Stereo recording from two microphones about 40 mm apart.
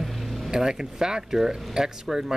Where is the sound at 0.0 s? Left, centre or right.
Centre.